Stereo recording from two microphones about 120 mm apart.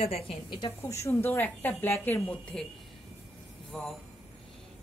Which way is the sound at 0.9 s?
20° left (ahead or behind).